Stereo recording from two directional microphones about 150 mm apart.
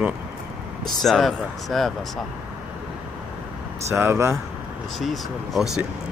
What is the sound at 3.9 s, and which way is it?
Speech, 15° right (ahead or behind).